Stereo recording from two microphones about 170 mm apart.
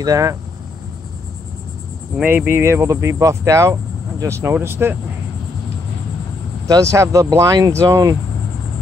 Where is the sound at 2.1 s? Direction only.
10° right (ahead or behind).